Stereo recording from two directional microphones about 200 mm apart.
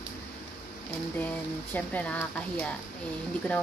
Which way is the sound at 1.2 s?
10° left (ahead or behind).